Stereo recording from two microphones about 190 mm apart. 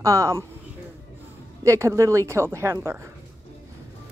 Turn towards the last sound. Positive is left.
turn(degrees=-15)  # may be behind; listen again after turning